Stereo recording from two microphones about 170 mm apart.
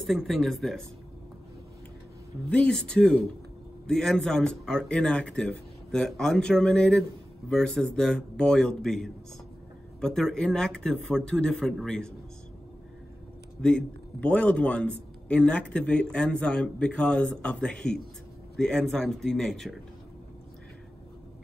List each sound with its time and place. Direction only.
0.0 s speech: centre (ahead or behind)
2.5 s speech: 5° left (ahead or behind)
13.6 s speech: 5° left (ahead or behind)